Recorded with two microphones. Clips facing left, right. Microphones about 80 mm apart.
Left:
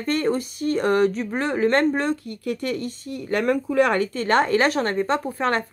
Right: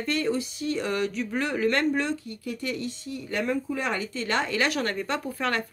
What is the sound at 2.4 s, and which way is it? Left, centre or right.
Speech, left.